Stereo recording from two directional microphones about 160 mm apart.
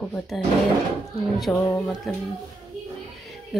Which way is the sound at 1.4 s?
5° left (ahead or behind).